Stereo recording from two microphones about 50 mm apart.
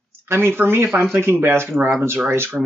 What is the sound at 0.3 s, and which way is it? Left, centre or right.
Speech, right.